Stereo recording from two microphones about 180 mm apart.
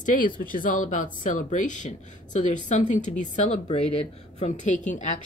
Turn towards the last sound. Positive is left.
turn(degrees=40)  # may be behind; listen again after turning